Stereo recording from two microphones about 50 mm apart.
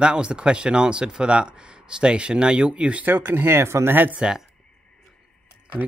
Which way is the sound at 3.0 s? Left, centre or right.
Right.